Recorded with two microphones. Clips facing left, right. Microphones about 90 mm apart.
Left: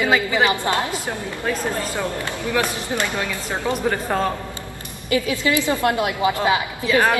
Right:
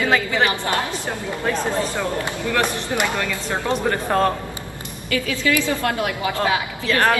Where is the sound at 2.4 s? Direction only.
15° left (ahead or behind).